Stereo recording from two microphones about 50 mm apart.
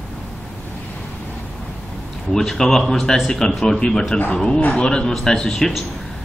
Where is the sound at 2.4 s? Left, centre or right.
Centre.